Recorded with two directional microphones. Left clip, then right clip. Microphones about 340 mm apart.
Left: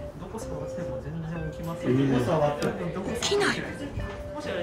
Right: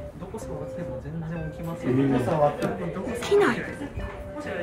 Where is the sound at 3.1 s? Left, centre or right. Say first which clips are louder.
Right 4 dB; centre.